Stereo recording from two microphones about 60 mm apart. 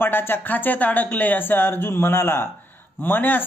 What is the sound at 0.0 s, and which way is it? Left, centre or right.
Speech, left.